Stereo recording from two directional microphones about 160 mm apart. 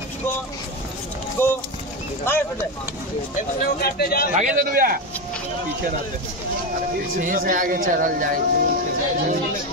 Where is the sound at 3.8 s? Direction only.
75° left (ahead or behind).